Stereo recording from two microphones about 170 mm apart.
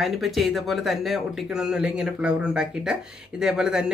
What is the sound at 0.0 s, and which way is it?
Speech, centre (ahead or behind).